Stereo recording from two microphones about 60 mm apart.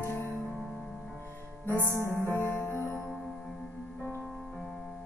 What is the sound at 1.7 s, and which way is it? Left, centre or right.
Music, right.